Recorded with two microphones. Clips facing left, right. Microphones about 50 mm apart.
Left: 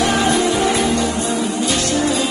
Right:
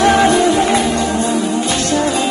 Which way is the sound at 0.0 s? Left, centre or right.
Right.